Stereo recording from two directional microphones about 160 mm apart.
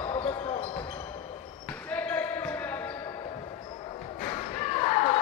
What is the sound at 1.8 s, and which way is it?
Basketball bounce, 10° left (ahead or behind).